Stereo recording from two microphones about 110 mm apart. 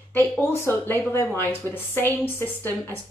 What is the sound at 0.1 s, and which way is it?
Speech, 20° left (ahead or behind).